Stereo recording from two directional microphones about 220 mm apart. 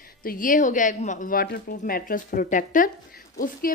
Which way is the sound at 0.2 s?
40° left (ahead or behind).